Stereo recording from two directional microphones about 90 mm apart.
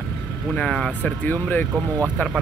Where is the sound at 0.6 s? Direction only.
5° left (ahead or behind).